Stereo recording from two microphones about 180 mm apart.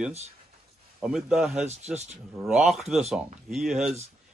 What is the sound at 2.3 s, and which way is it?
Speech, centre (ahead or behind).